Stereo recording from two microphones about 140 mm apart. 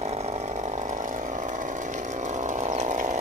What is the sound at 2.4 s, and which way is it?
Chainsaw, 60° right (ahead or behind).